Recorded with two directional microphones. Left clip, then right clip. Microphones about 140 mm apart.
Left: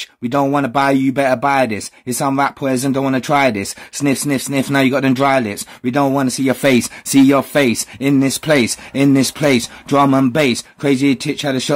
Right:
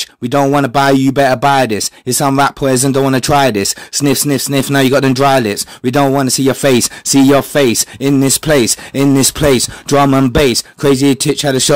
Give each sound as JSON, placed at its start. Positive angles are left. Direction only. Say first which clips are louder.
{"t": 0.0, "sound": "speech", "louder": "right 4 dB", "side_deg": -25}